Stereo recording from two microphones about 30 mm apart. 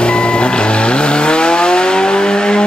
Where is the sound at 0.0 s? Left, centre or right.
Left.